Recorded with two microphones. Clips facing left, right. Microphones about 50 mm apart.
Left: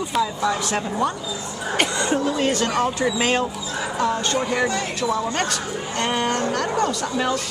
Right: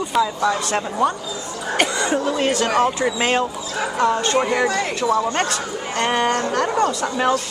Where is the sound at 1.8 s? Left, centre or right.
Right.